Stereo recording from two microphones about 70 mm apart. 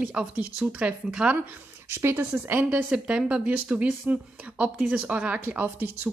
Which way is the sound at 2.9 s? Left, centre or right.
Centre.